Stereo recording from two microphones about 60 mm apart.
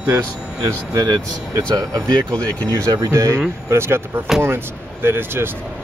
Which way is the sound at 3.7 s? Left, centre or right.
Right.